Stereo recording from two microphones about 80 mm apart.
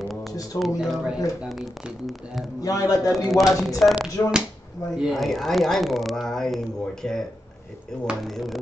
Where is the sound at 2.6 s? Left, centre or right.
Left.